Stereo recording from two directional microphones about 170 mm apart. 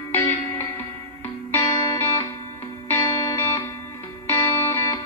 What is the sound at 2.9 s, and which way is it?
Music, 15° left (ahead or behind).